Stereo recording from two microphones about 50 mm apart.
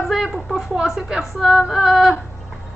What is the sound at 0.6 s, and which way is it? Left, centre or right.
A woman's voice, centre.